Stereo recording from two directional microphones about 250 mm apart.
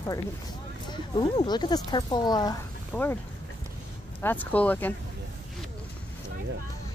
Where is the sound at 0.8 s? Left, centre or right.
Centre.